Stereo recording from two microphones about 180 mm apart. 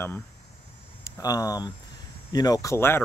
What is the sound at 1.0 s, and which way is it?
Speech, 20° left (ahead or behind).